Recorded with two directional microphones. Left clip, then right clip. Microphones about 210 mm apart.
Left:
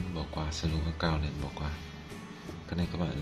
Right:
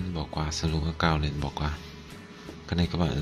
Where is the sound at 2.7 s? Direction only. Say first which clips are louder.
Right 7 dB; 30° right (ahead or behind).